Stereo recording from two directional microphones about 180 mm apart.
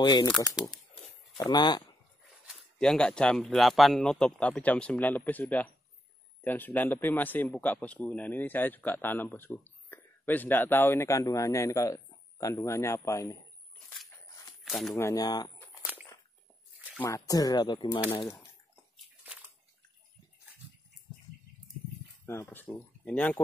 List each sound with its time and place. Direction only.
0.0 s speech: 25° left (ahead or behind)
0.3 s speech: centre (ahead or behind)
1.4 s speech: 25° left (ahead or behind)
2.4 s a man's voice: 5° left (ahead or behind)
14.6 s speech: centre (ahead or behind)
15.0 s speech: 20° left (ahead or behind)
15.8 s biting: 10° right (ahead or behind)
17.0 s a man's voice: 20° left (ahead or behind)
22.2 s speech: 15° left (ahead or behind)